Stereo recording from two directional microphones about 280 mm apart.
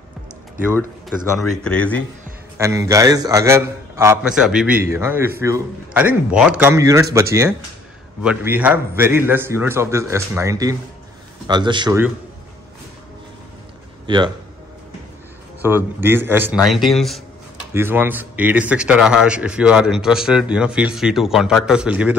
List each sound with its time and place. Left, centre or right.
0.6 s a man's voice: centre
1.6 s speech: centre
2.5 s a man's voice: centre
14.0 s a man's voice: centre
15.6 s a man's voice: centre